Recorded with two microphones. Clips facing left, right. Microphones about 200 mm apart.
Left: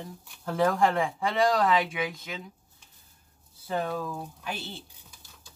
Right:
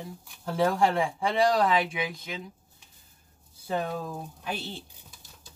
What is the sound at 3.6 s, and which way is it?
Speech, 15° right (ahead or behind).